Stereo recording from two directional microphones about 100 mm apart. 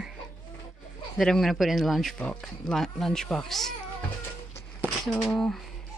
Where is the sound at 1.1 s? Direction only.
5° left (ahead or behind).